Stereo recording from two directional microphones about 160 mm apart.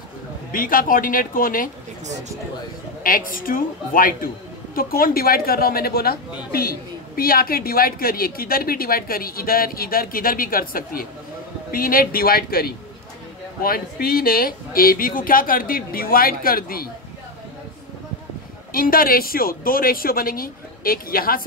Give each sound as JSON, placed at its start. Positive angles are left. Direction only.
{"t": 0.5, "sound": "speech", "side_deg": 60}
{"t": 2.0, "sound": "speech", "side_deg": -45}
{"t": 3.0, "sound": "a woman's voice", "side_deg": 60}
{"t": 18.7, "sound": "speech", "side_deg": 65}